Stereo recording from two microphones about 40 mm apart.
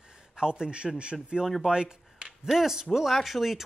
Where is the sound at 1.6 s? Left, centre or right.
Right.